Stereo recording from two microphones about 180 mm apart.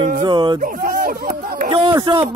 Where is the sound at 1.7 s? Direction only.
30° right (ahead or behind).